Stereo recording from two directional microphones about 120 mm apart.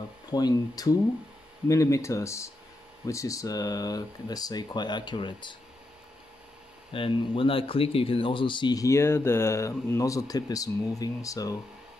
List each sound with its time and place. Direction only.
0.3 s speech: 35° left (ahead or behind)
6.9 s speech: 50° left (ahead or behind)
8.8 s speech: 20° left (ahead or behind)